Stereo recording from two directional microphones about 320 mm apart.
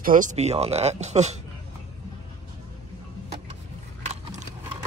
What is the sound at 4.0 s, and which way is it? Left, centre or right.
Biting, right.